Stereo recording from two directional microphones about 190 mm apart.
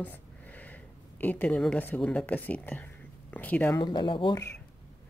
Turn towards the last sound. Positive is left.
turn(degrees=25)  # may be behind; listen again after turning